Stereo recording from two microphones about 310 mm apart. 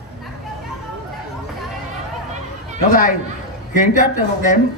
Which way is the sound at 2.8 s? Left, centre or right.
Left.